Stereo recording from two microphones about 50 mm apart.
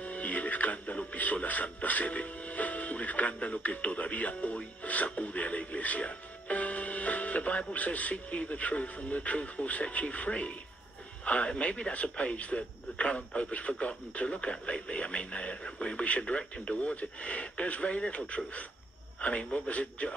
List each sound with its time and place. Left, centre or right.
0.0 s speech: left